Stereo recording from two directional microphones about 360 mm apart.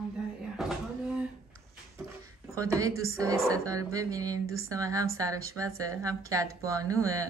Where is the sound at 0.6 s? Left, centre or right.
Centre.